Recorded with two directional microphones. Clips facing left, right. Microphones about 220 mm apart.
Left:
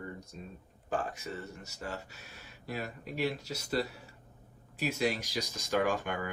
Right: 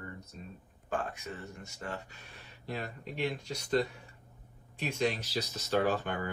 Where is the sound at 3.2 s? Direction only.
40° left (ahead or behind).